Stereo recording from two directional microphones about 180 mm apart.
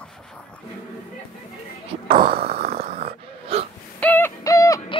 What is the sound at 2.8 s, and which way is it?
Wheeze, 35° right (ahead or behind).